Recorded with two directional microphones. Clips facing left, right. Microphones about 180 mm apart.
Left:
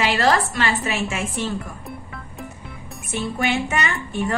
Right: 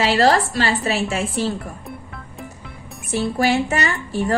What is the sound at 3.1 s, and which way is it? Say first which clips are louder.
Speech: right 4 dB; 35° right (ahead or behind).